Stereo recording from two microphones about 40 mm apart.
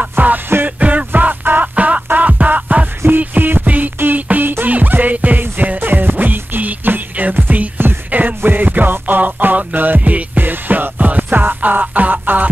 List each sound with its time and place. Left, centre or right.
0.2 s music: right
0.7 s music: right
1.8 s music: right
3.6 s music: right
5.8 s music: right
8.4 s music: right
8.6 s music: right
10.4 s music: right
11.0 s music: right